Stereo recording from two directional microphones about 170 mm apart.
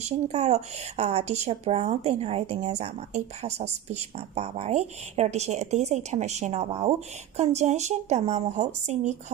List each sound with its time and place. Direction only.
0.0 s speech: 40° right (ahead or behind)